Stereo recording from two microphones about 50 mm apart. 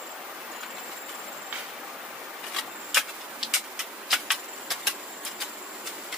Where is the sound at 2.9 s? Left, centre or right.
Centre.